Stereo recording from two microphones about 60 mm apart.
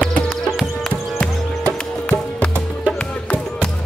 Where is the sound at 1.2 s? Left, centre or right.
Left.